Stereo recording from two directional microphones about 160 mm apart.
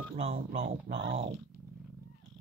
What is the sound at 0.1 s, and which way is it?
Speech, 40° right (ahead or behind).